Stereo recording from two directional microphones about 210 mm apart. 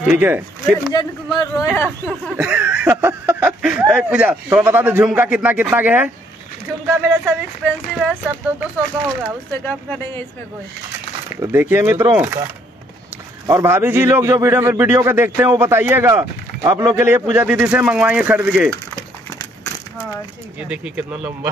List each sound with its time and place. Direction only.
0.0 s speech: 10° right (ahead or behind)
0.9 s speech: 20° left (ahead or behind)
1.8 s a man's voice: 5° left (ahead or behind)
7.1 s speech: 5° right (ahead or behind)
9.5 s speech: 10° left (ahead or behind)
11.3 s a man's voice: 15° right (ahead or behind)
13.5 s a man's voice: 15° right (ahead or behind)
19.3 s a sound: 10° left (ahead or behind)
20.5 s speech: 5° right (ahead or behind)